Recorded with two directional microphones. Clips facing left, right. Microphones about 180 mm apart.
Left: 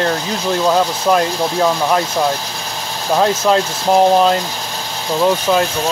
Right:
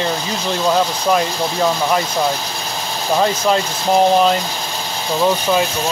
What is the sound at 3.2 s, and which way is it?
Speech, centre (ahead or behind).